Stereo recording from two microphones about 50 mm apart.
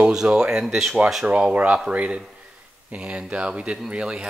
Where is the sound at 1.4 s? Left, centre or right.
Right.